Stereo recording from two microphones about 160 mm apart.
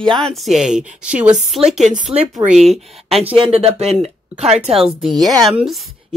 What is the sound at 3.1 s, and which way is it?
Speech, 40° right (ahead or behind).